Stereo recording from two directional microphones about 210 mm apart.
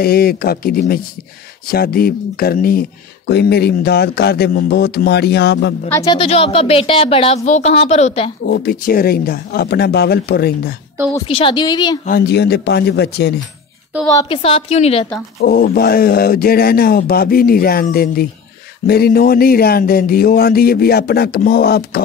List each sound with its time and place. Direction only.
0.0 s speech: 45° left (ahead or behind)
5.9 s speech: 15° left (ahead or behind)
6.1 s speech: 25° left (ahead or behind)
8.5 s speech: 45° left (ahead or behind)
11.2 s speech: 25° left (ahead or behind)
12.1 s speech: 50° left (ahead or behind)
14.1 s speech: 25° left (ahead or behind)
15.4 s speech: 45° left (ahead or behind)